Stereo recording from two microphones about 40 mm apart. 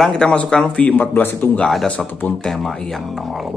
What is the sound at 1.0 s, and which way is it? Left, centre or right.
Speech, left.